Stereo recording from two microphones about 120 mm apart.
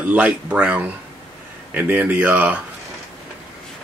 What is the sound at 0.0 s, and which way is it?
Speech, 10° right (ahead or behind).